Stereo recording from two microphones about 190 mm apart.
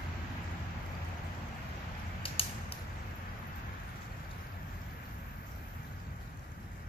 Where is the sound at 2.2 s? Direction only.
30° left (ahead or behind).